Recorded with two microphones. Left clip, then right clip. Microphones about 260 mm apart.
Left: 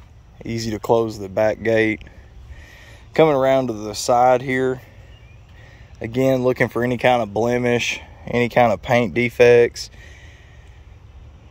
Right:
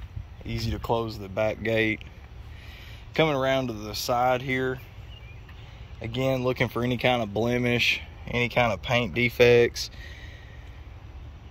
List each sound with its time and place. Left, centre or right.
0.5 s speech: left
5.9 s a man's voice: left
6.2 s speech: left; by 10.3 s centre